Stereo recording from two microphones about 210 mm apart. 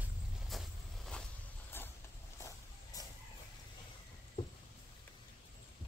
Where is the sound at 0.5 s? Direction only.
Centre (ahead or behind).